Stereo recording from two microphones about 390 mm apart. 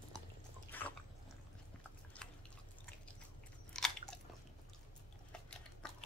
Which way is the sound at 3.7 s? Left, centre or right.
Centre.